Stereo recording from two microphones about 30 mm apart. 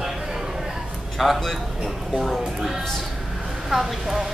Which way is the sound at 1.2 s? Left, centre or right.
Centre.